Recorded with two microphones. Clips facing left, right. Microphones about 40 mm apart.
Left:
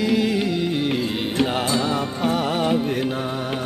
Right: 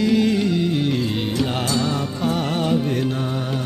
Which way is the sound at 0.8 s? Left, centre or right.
Centre.